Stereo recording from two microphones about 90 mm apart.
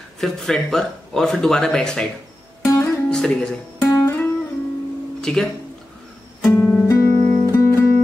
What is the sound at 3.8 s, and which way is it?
Music, 25° left (ahead or behind).